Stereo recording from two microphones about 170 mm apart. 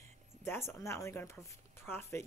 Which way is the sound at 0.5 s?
15° left (ahead or behind).